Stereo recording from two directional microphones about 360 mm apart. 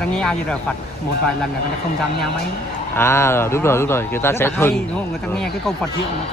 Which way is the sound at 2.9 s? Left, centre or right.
Centre.